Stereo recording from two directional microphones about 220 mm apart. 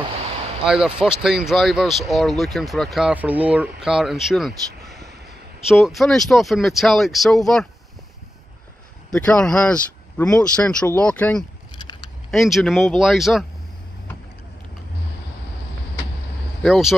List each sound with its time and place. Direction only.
0.7 s speech: 5° right (ahead or behind)
5.7 s speech: centre (ahead or behind)
9.1 s speech: 5° left (ahead or behind)
11.7 s a sound: 20° left (ahead or behind)
12.3 s speech: centre (ahead or behind)
16.6 s speech: centre (ahead or behind)